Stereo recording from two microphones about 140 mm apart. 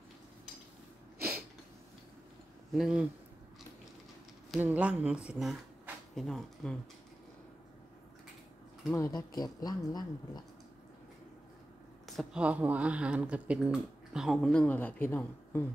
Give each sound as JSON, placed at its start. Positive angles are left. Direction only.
{"t": 2.7, "sound": "speech", "side_deg": -5}
{"t": 4.6, "sound": "speech", "side_deg": -10}
{"t": 8.9, "sound": "speech", "side_deg": 25}
{"t": 12.1, "sound": "speech", "side_deg": 0}